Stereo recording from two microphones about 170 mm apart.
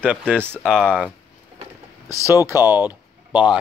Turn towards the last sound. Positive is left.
turn(degrees=-10)  # may be behind; listen again after turning